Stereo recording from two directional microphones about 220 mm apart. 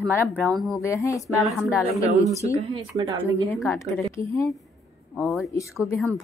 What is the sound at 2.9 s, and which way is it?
Speech, 20° right (ahead or behind).